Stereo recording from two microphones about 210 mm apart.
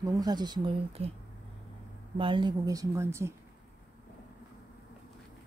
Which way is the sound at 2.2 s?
25° right (ahead or behind).